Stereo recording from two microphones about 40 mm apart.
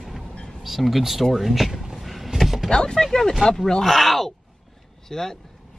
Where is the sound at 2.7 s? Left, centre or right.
Centre.